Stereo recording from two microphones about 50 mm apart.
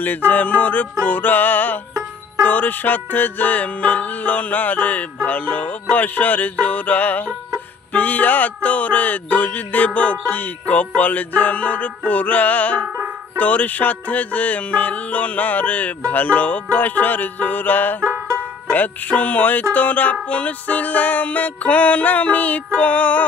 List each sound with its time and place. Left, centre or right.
0.3 s music: left
12.8 s music: right
13.4 s music: left